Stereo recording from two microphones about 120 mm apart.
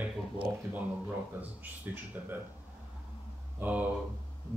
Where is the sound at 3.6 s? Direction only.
15° right (ahead or behind).